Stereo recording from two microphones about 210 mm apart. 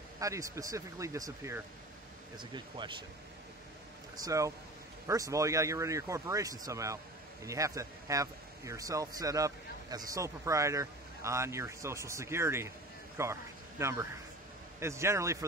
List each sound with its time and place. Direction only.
0.2 s a man's voice: 15° right (ahead or behind)
4.2 s a man's voice: 15° right (ahead or behind)